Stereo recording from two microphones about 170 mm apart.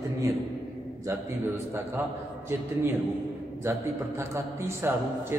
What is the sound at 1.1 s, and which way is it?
Speech, 15° right (ahead or behind).